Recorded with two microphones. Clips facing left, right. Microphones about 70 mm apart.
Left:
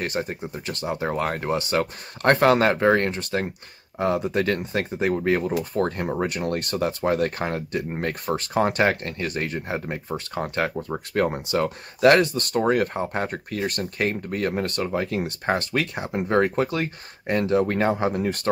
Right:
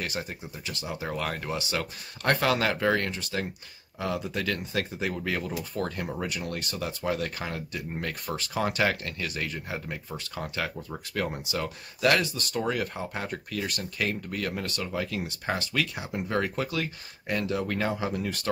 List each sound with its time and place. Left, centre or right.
0.0 s speech: left